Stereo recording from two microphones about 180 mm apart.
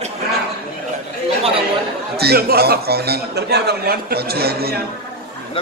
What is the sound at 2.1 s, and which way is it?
A man's voice, 60° right (ahead or behind).